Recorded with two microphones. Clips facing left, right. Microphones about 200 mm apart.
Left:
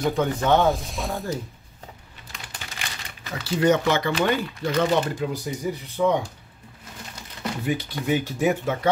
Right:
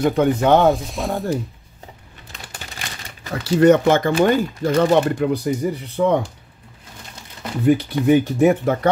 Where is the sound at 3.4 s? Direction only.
60° right (ahead or behind).